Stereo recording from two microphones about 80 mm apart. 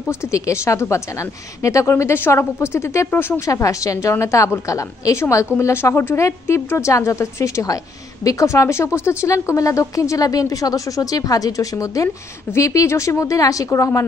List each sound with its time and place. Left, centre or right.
0.1 s a woman's voice: left
3.4 s a woman's voice: left